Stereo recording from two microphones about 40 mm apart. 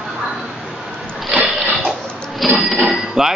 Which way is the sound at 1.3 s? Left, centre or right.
Centre.